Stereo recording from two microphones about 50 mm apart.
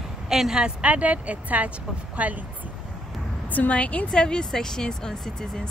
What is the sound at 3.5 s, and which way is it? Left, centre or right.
Speech, left.